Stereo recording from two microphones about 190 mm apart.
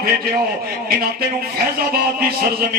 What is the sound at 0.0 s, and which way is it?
Speech, 55° right (ahead or behind).